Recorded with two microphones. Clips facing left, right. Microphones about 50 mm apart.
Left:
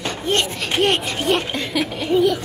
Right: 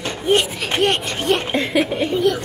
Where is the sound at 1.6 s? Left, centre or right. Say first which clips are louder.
Right 4 dB; centre.